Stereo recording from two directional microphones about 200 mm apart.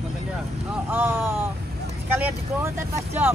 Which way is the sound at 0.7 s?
10° right (ahead or behind).